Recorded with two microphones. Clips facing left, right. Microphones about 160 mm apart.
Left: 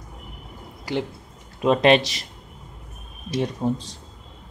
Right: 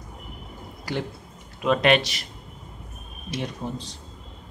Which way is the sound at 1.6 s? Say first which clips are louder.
Left 3 dB; 30° left (ahead or behind).